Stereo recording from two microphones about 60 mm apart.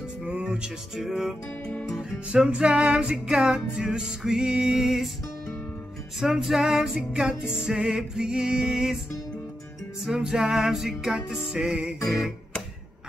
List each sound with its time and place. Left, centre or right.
0.2 s music: centre
0.9 s music: centre
6.1 s music: centre
10.0 s music: centre
12.0 s music: centre